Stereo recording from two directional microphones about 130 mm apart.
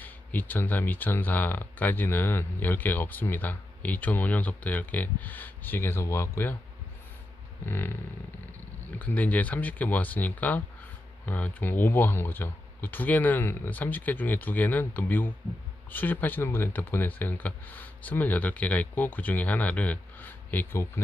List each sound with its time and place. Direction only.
0.0 s speech: 15° left (ahead or behind)
7.6 s speech: 15° left (ahead or behind)